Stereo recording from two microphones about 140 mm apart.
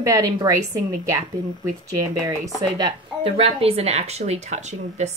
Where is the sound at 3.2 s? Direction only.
45° right (ahead or behind).